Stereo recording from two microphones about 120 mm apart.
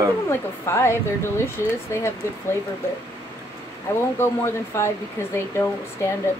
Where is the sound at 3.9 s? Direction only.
20° left (ahead or behind).